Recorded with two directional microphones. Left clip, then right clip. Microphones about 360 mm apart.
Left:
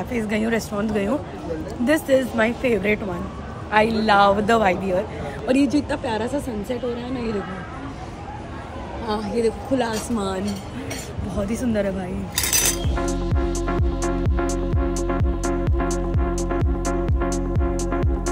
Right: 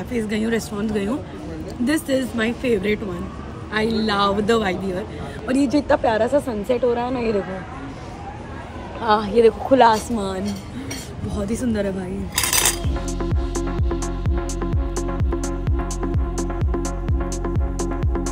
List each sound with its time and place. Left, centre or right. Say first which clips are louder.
0.1 s a woman's voice: right 1 dB; centre
9.0 s a woman's voice: right 8 dB; centre
9.4 s speech: right 9 dB; right
10.0 s a woman's voice: even; centre
12.5 s music: left 1 dB; centre